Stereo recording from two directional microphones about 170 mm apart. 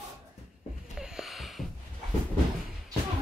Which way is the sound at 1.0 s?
5° right (ahead or behind).